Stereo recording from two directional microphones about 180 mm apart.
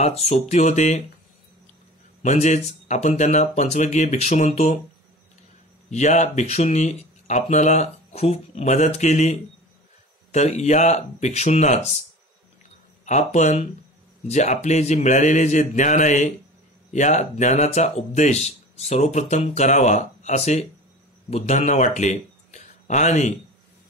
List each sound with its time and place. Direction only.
0.0 s speech: 35° left (ahead or behind)
2.2 s speech: 35° left (ahead or behind)
5.9 s speech: 40° left (ahead or behind)
13.0 s speech: 40° left (ahead or behind)